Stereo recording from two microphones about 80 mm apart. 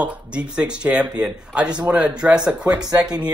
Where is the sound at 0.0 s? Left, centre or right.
Centre.